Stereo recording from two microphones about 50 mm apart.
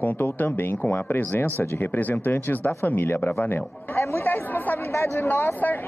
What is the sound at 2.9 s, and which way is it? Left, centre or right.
Speech, left.